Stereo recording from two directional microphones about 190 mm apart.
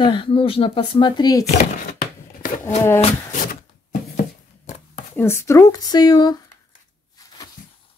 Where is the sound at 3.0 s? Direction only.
40° left (ahead or behind).